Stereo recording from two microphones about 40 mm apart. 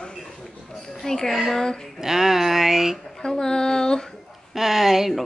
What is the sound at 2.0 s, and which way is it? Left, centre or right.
Speech, centre.